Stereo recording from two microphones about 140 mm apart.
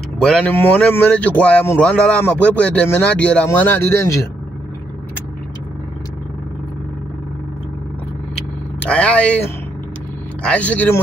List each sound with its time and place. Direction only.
0.2 s a man's voice: 5° left (ahead or behind)
8.8 s a man's voice: 10° left (ahead or behind)